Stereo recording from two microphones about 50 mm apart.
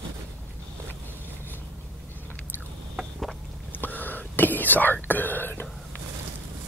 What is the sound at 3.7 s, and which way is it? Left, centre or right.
Whispering, left.